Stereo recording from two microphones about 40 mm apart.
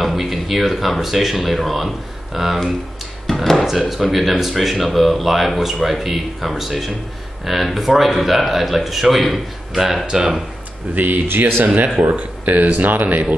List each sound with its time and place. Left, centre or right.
0.0 s speech: centre
10.0 s speech: centre
11.2 s speech: right
11.6 s speech: right